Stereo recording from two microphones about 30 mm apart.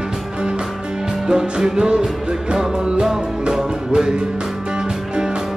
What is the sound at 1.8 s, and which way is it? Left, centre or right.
Music, right.